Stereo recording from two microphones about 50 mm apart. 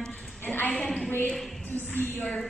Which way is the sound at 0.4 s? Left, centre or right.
Left.